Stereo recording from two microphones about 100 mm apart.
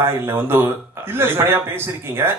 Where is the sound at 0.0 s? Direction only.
25° right (ahead or behind).